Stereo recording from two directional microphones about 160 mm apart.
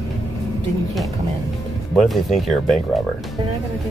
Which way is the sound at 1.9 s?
Centre (ahead or behind).